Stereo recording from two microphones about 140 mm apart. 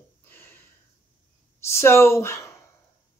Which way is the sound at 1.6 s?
20° left (ahead or behind).